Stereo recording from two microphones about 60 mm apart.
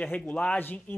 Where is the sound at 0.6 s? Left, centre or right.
Left.